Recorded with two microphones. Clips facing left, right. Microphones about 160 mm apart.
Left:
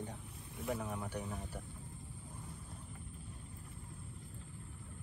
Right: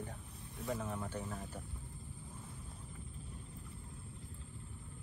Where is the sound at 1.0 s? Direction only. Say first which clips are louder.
Even; 15° left (ahead or behind).